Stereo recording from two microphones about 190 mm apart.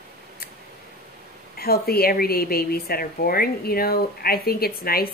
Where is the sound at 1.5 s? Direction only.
55° left (ahead or behind).